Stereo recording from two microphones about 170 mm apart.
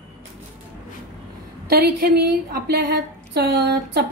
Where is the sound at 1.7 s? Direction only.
70° right (ahead or behind).